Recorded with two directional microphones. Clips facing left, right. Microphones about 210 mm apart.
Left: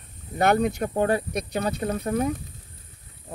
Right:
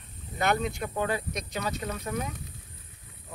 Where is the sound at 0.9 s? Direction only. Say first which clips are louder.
Left 7 dB; 45° left (ahead or behind).